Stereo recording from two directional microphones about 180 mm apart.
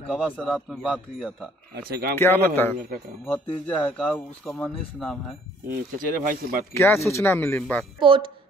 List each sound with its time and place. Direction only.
0.1 s speech: 5° left (ahead or behind)
1.8 s speech: 55° right (ahead or behind)
2.1 s speech: 10° left (ahead or behind)
5.9 s speech: 50° right (ahead or behind)
6.7 s speech: 15° left (ahead or behind)
8.0 s speech: 30° right (ahead or behind)